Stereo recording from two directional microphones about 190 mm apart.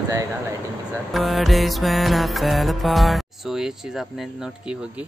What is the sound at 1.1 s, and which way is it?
Music, centre (ahead or behind).